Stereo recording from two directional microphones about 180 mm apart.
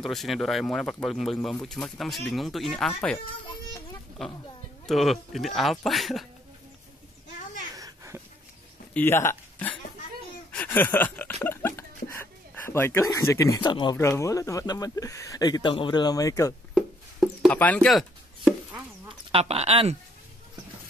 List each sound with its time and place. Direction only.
0.0 s speech: centre (ahead or behind)
4.2 s speech: centre (ahead or behind)
7.7 s a sound: 20° right (ahead or behind)
8.9 s a sound: 15° left (ahead or behind)
13.9 s speech: 15° left (ahead or behind)
16.7 s music: centre (ahead or behind)
17.6 s chop: 10° left (ahead or behind)
19.0 s speech: 35° right (ahead or behind)